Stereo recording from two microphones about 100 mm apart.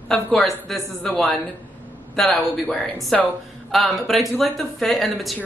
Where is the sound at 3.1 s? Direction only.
5° left (ahead or behind).